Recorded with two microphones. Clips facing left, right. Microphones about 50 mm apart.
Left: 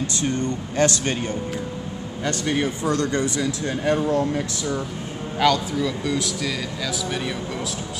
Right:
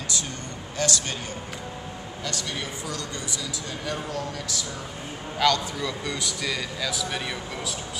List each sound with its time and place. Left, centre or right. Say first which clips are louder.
0.2 s speech: left 11 dB; left
5.4 s speech: left 4 dB; centre